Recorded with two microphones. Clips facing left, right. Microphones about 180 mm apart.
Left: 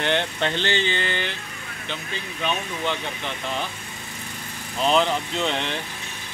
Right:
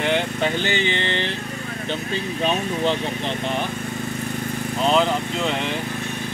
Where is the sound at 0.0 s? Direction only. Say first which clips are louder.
Right 2 dB; 5° right (ahead or behind); by 1.3 s 25° right (ahead or behind).